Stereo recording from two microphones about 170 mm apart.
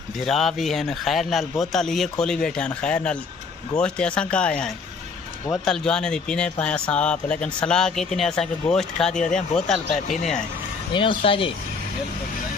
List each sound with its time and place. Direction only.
0.2 s a man's voice: centre (ahead or behind)
10.9 s speech: 30° left (ahead or behind)